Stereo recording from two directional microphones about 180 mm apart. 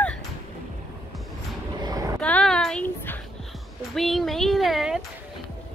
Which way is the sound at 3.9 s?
Centre (ahead or behind).